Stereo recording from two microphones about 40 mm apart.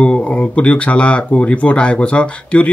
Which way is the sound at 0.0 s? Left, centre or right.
Left.